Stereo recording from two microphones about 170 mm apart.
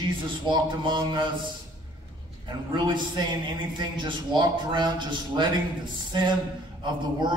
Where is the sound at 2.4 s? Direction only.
25° right (ahead or behind).